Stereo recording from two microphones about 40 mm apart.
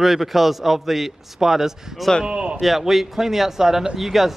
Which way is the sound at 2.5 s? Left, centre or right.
Centre.